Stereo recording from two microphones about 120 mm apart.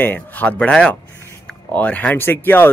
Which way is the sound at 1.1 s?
20° left (ahead or behind).